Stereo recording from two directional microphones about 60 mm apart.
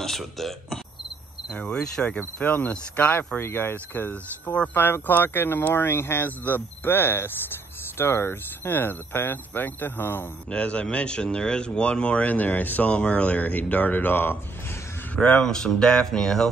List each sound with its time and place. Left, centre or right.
0.0 s speech: centre
1.5 s speech: centre
3.3 s speech: left
10.5 s speech: centre; by 14.4 s left
15.1 s speech: centre